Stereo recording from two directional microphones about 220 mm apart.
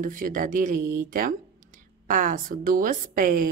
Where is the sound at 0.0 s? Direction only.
35° right (ahead or behind).